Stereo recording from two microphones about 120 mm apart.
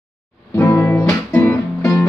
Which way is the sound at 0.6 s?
20° left (ahead or behind).